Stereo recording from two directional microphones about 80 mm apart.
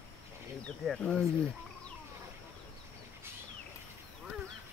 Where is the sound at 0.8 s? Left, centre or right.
Centre.